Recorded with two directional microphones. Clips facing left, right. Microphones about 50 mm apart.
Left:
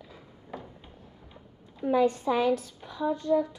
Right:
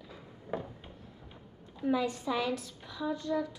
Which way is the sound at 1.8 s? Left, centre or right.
Left.